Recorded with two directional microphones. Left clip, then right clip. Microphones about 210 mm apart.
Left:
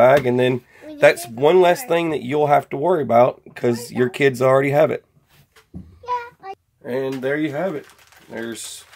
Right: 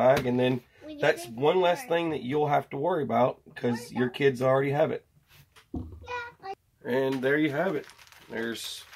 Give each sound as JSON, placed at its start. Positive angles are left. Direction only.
{"t": 0.0, "sound": "speech", "side_deg": 55}
{"t": 6.5, "sound": "speech", "side_deg": 5}